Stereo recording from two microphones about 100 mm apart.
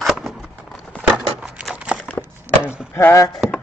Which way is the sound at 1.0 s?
15° right (ahead or behind).